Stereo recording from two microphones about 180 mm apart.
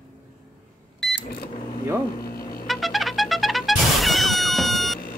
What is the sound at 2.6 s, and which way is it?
Music, centre (ahead or behind).